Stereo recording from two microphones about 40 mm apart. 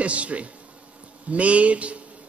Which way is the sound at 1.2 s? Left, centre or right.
Right.